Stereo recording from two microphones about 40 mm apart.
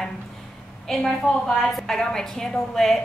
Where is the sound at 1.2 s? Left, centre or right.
Centre.